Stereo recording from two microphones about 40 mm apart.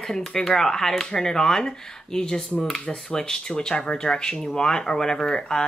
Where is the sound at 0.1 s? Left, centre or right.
Centre.